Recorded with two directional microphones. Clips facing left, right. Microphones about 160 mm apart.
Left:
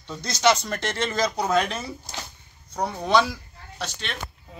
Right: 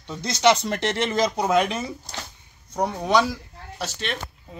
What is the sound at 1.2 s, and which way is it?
Speech, 10° right (ahead or behind).